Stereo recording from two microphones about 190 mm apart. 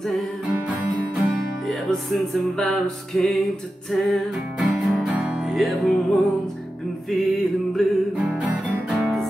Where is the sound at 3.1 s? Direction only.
Centre (ahead or behind).